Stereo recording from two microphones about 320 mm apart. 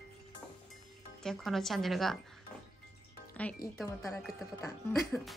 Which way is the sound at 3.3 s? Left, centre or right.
Centre.